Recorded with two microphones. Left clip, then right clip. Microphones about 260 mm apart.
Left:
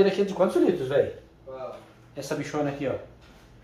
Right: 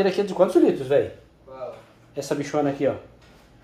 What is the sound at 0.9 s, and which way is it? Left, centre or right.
Speech, right.